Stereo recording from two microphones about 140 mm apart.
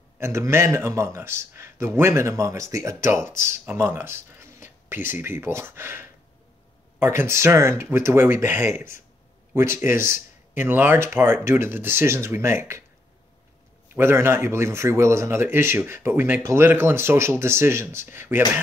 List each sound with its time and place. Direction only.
0.2 s speech: 20° right (ahead or behind)
13.9 s speech: 15° right (ahead or behind)